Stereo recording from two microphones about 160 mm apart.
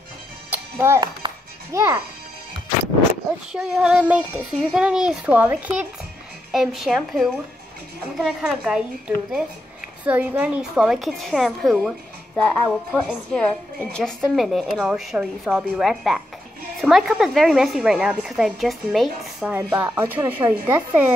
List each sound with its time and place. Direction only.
0.5 s music: 15° right (ahead or behind)
3.5 s a woman's voice: 5° right (ahead or behind)